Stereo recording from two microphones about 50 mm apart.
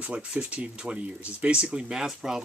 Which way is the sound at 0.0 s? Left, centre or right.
Right.